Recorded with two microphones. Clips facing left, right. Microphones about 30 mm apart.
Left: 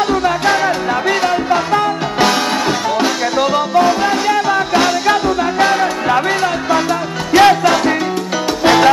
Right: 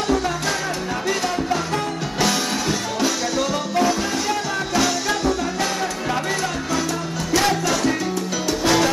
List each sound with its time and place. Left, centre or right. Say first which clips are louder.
0.1 s music: left 8 dB; left
7.3 s music: left 11 dB; left